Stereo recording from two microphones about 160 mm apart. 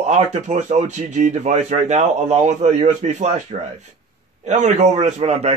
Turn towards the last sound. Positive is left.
turn(degrees=-40)  # may be behind; listen again after turning